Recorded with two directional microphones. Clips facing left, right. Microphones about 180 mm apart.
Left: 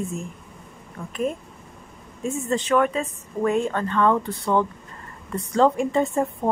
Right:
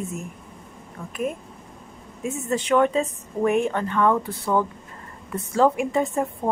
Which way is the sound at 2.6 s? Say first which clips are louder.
Right 3 dB; 20° right (ahead or behind).